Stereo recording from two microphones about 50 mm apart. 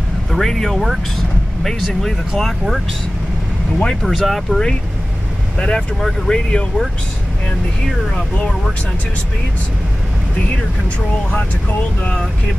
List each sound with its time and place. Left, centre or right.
0.3 s speech: centre
4.0 s speech: centre
5.6 s speech: centre
12.0 s speech: centre